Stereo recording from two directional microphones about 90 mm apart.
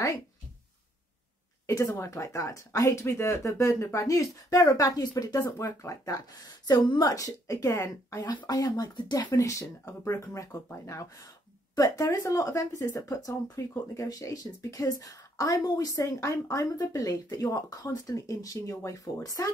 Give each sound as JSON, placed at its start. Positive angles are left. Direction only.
{"t": 1.7, "sound": "speech", "side_deg": 35}
{"t": 7.1, "sound": "speech", "side_deg": 40}